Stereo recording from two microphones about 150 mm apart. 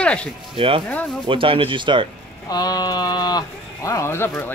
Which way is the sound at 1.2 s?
35° right (ahead or behind).